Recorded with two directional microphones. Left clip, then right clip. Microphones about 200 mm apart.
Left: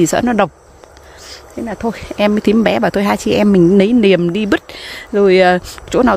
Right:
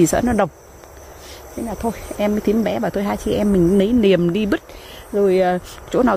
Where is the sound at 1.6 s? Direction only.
30° left (ahead or behind).